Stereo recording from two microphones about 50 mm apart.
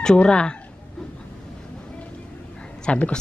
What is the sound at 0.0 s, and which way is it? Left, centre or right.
Speech, centre.